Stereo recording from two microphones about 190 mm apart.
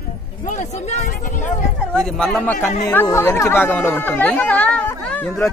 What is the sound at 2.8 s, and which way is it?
Speech, 10° left (ahead or behind).